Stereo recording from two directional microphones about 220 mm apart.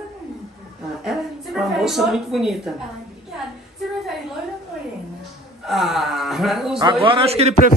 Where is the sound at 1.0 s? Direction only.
Centre (ahead or behind).